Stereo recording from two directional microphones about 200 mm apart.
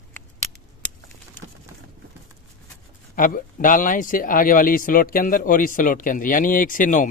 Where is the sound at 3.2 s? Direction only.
45° left (ahead or behind).